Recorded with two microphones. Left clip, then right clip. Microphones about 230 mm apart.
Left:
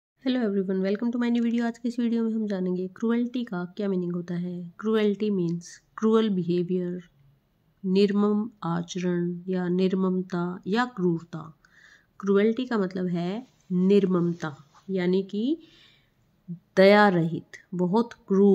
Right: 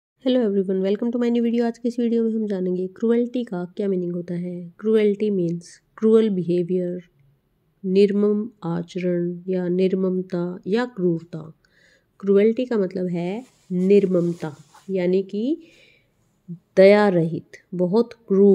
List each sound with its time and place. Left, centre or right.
0.2 s speech: centre
14.6 s a sound: right
14.9 s speech: centre